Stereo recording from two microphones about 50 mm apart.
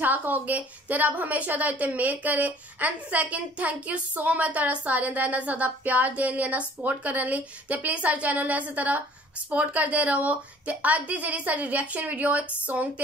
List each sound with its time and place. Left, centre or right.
0.0 s a woman's voice: right